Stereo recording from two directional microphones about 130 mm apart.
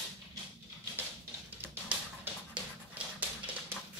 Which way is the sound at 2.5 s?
10° right (ahead or behind).